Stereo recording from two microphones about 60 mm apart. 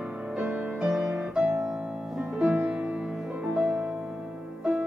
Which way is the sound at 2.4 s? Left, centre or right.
Right.